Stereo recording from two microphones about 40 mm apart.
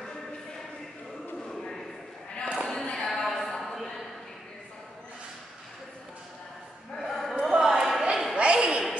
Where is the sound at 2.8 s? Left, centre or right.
Left.